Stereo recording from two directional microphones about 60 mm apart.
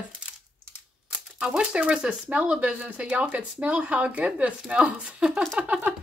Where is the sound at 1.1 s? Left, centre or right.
Centre.